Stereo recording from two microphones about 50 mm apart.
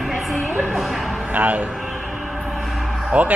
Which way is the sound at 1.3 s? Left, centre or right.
Right.